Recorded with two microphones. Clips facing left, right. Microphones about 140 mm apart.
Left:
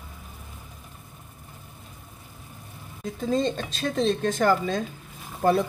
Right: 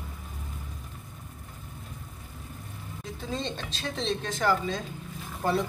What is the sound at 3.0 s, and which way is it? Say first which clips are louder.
Speech: left 9 dB; 45° left (ahead or behind).